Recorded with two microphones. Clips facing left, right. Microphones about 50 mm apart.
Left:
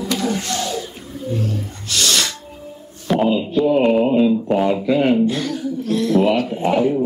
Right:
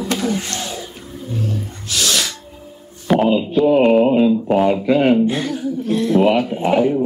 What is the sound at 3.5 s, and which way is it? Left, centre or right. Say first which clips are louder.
Speech: right 3 dB; centre.